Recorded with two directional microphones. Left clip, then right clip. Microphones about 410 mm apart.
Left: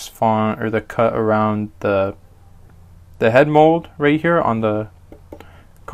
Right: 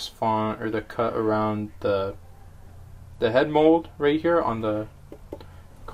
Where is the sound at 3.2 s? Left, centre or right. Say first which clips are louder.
Left 8 dB; left.